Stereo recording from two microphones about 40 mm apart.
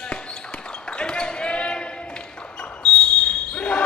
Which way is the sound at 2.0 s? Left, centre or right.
Left.